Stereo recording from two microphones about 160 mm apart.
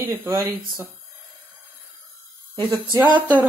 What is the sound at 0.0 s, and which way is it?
Speech, 15° right (ahead or behind).